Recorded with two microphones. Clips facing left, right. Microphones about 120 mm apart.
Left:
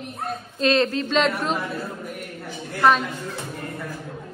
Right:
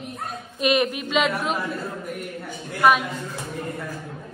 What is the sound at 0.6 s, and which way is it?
A woman's voice, 15° right (ahead or behind).